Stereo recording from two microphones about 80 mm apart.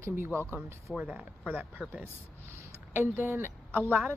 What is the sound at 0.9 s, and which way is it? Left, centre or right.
Speech, centre.